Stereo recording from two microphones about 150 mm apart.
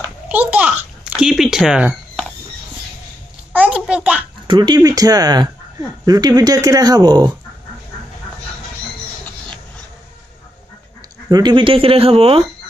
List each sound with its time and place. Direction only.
0.3 s a sound: 10° right (ahead or behind)
1.2 s speech: 5° right (ahead or behind)
3.5 s babbling: 10° right (ahead or behind)
4.5 s speech: 30° right (ahead or behind)
11.2 s speech: 25° right (ahead or behind)